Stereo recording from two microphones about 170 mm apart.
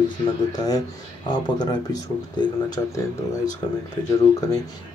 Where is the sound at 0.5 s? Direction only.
20° left (ahead or behind).